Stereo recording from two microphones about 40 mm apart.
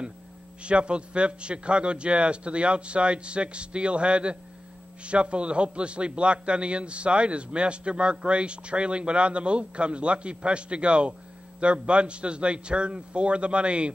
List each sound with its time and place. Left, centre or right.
0.6 s a man's voice: right